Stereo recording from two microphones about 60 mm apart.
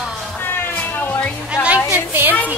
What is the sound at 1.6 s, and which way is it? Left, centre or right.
Music, left.